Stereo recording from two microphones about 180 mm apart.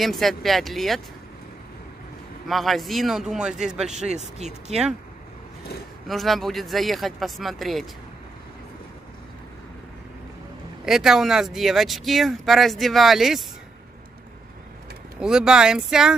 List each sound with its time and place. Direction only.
0.0 s speech: centre (ahead or behind)
2.4 s speech: centre (ahead or behind)
4.1 s speech: 40° right (ahead or behind)
6.0 s speech: centre (ahead or behind)
10.9 s speech: centre (ahead or behind)
15.1 s speech: 5° right (ahead or behind)